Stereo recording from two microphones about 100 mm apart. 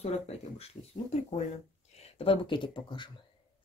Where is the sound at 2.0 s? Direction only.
80° left; by 3.1 s 50° left (ahead or behind).